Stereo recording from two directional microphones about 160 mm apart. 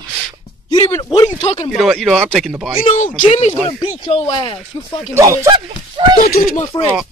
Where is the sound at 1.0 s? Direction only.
30° left (ahead or behind).